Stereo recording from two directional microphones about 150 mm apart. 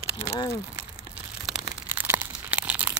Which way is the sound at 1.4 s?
5° right (ahead or behind).